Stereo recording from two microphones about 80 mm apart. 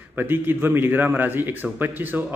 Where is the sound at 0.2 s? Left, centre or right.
Right.